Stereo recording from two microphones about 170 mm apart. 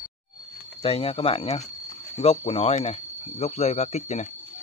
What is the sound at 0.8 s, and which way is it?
Speech, 35° left (ahead or behind).